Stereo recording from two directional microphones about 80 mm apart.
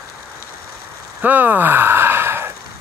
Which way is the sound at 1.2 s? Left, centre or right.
Right.